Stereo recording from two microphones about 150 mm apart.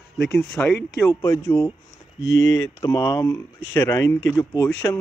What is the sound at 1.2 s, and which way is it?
Speech, 20° left (ahead or behind).